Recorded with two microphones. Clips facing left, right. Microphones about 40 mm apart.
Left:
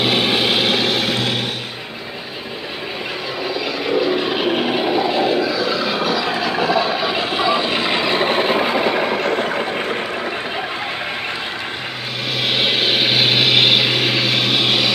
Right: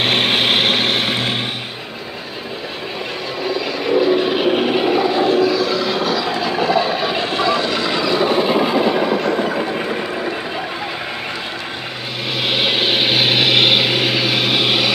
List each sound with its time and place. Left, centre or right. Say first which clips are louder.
0.0 s vehicle: right 1 dB; right
3.4 s vehicle: right 2 dB; centre; by 9.6 s left
9.6 s vehicle: right 1 dB; left
12.4 s vehicle: right 1 dB; centre